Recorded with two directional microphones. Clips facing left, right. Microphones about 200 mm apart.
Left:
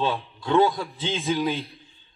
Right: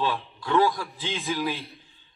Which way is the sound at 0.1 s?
25° left (ahead or behind).